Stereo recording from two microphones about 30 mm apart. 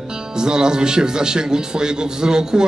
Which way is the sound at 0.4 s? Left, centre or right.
Right.